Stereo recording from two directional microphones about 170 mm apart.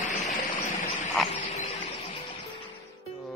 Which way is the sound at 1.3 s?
40° left (ahead or behind).